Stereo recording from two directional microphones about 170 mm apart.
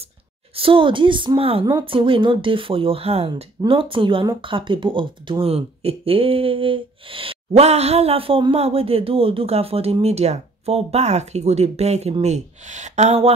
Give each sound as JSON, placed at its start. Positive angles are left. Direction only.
{"t": 0.6, "sound": "a woman's voice", "side_deg": -30}